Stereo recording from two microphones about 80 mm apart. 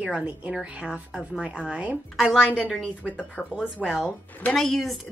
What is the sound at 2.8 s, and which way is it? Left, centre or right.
Speech, centre.